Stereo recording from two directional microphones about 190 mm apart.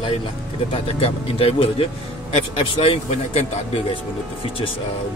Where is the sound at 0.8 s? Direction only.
30° left (ahead or behind).